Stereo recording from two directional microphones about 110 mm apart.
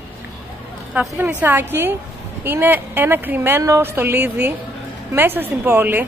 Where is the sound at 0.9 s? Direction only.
15° right (ahead or behind).